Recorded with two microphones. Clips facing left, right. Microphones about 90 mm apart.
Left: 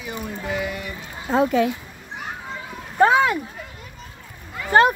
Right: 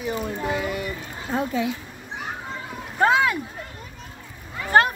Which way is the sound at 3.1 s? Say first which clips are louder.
Right 1 dB; 30° left (ahead or behind).